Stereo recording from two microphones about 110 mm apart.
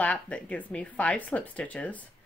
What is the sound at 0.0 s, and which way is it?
Speech, 10° left (ahead or behind).